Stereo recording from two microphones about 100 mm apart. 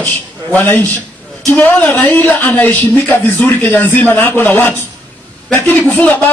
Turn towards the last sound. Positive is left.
turn(degrees=15)  # may be behind; listen again after turning